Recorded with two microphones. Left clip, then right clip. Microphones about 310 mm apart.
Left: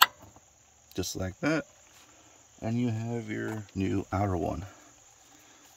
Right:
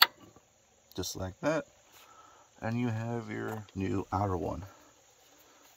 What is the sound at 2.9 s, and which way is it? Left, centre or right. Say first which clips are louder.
Speech: left 2 dB; right.